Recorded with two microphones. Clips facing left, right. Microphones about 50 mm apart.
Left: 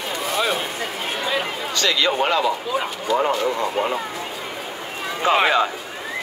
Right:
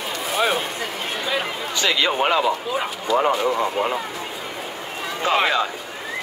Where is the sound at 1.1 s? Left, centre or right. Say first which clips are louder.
Left 1 dB; centre.